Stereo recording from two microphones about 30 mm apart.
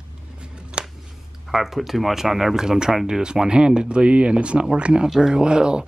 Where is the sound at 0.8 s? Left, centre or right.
Right.